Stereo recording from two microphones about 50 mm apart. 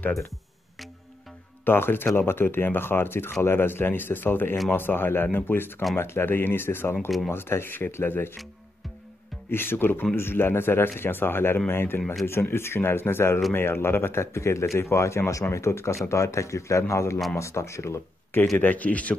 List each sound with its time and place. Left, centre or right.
1.6 s speech: left
9.5 s speech: left
15.5 s speech: left
16.1 s speech: left
16.9 s speech: left
18.6 s speech: left